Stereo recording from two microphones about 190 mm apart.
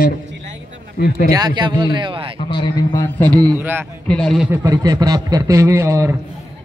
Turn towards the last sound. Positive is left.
turn(degrees=-15)  # may be behind; listen again after turning